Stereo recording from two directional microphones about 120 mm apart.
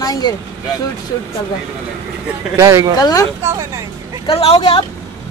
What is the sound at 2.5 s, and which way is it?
Speech, 25° right (ahead or behind).